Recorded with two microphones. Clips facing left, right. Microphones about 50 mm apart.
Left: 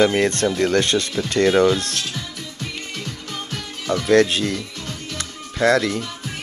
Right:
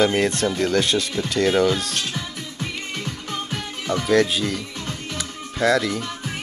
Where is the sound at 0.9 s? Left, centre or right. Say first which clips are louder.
Left 2 dB; centre.